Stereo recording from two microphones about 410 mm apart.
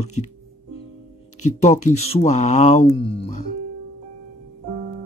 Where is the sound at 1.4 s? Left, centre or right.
Centre.